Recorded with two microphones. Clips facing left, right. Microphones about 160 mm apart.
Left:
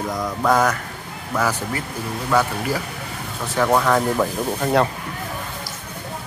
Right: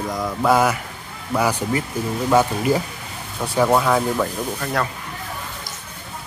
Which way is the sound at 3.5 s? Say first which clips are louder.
Right 1 dB; 10° right (ahead or behind).